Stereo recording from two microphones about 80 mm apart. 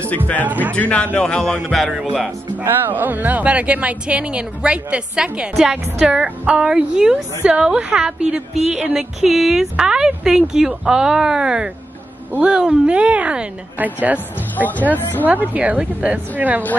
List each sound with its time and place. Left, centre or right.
0.5 s a woman's voice: right
0.7 s speech: centre
2.6 s a woman's voice: right